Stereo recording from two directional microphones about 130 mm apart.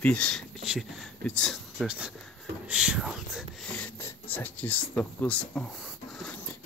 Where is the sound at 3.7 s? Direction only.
10° left (ahead or behind).